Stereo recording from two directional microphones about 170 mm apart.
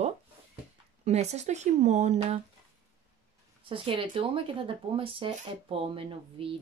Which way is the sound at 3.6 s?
30° right (ahead or behind).